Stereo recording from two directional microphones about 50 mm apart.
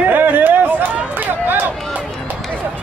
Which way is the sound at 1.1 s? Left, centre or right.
Right.